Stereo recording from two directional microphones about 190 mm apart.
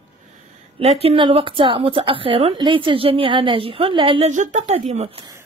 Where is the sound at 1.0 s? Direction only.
30° right (ahead or behind).